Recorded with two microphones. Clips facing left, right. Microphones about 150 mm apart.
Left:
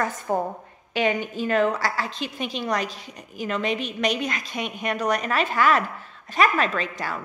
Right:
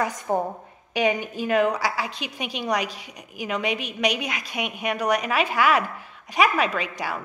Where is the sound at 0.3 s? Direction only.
20° right (ahead or behind).